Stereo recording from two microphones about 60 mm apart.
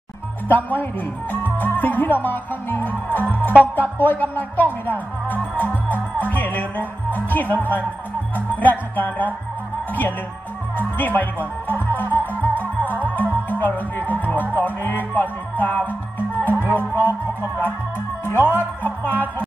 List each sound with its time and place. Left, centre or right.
0.5 s speech: left
6.1 s music: left
10.8 s speech: left
13.1 s music: left
16.6 s speech: left